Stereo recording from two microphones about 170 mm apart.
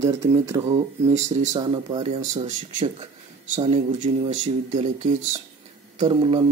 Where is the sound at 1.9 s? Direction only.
35° right (ahead or behind).